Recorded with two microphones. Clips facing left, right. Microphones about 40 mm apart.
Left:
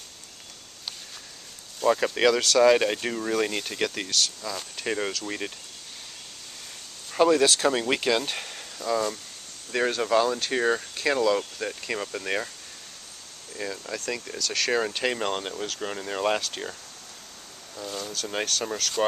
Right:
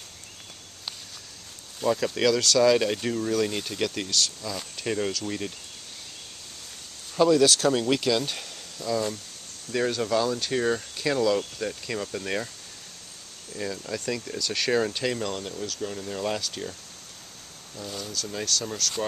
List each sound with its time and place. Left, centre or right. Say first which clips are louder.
1.9 s speech: left 2 dB; left
7.2 s speech: even; left
13.6 s speech: right 1 dB; centre
14.4 s speech: left 1 dB; centre
14.7 s speech: right 1 dB; centre
17.7 s speech: left 2 dB; centre
18.1 s speech: left 4 dB; left